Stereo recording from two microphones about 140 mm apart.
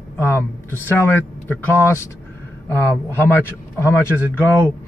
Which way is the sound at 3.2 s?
15° left (ahead or behind).